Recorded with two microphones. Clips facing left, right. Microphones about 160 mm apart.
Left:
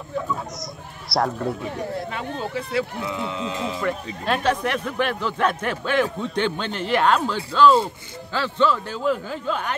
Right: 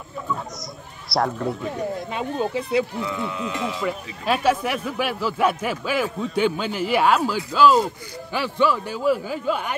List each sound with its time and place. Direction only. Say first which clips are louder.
1.1 s speech: even; centre (ahead or behind)
2.1 s speech: right 4 dB; 20° right (ahead or behind)
3.1 s speech: even; 25° left (ahead or behind)
3.8 s speech: even; 5° right (ahead or behind)